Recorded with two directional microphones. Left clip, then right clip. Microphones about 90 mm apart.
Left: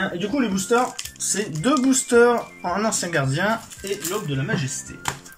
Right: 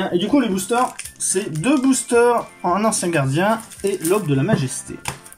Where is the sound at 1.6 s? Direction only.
20° right (ahead or behind).